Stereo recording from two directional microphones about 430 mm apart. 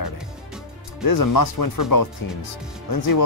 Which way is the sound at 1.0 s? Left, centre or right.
Left.